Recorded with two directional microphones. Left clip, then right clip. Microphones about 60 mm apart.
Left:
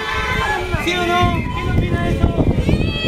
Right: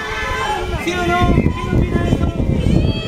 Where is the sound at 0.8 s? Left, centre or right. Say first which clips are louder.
Even; centre.